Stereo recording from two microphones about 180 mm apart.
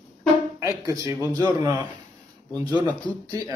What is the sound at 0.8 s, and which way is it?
A man's voice, 20° right (ahead or behind).